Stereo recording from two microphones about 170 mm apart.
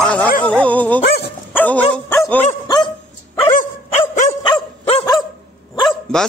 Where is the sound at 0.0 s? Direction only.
5° left (ahead or behind).